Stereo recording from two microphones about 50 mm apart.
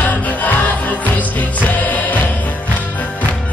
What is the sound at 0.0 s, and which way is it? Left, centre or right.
Music, left.